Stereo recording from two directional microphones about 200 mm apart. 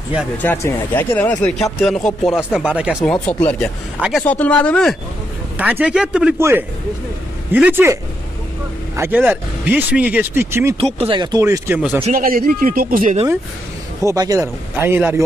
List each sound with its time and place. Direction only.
0.4 s speech: 10° left (ahead or behind); by 3.0 s 5° right (ahead or behind)
3.1 s speech: 5° left (ahead or behind)
5.6 s speech: 5° right (ahead or behind)
11.0 s speech: 25° right (ahead or behind)
12.1 s speech: 45° right (ahead or behind)
14.0 s speech: 15° right (ahead or behind)